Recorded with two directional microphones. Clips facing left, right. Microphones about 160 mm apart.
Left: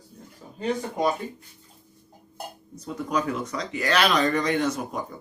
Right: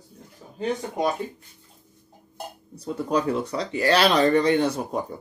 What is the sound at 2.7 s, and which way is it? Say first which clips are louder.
Speech: right 3 dB; 30° right (ahead or behind).